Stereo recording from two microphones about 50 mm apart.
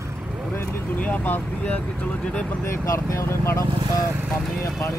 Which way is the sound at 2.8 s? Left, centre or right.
Left.